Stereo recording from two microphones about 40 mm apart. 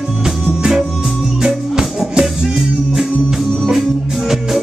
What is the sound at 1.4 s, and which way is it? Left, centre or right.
Music, centre.